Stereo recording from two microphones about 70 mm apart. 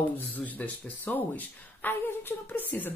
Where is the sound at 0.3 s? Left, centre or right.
Left.